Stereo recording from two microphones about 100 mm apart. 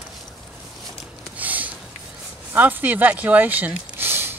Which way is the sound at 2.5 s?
15° right (ahead or behind).